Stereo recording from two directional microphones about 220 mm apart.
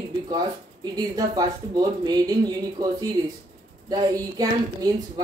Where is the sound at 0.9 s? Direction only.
15° right (ahead or behind).